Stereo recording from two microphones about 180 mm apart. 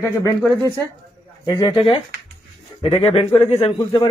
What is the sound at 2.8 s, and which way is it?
Speech, 35° left (ahead or behind).